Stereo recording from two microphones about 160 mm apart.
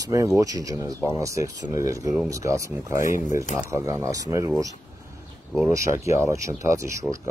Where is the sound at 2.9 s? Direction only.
55° left (ahead or behind).